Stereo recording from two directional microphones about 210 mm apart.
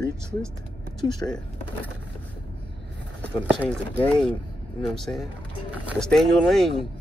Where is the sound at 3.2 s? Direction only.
5° left (ahead or behind).